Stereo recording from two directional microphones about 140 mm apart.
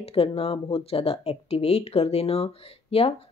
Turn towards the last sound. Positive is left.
turn(degrees=45)  # may be behind; listen again after turning